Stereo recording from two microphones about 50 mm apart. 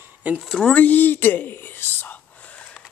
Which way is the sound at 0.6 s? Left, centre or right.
Left.